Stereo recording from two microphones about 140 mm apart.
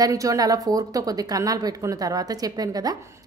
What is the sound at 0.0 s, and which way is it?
A woman's voice, 25° right (ahead or behind).